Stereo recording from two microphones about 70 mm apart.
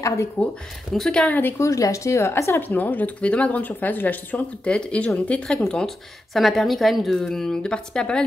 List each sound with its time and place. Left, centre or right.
0.0 s speech: left
0.9 s speech: centre
1.2 s speech: left
1.6 s speech: left
2.7 s speech: left
4.6 s speech: centre
5.7 s speech: centre